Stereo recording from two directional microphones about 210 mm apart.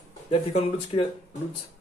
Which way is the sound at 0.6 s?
30° left (ahead or behind).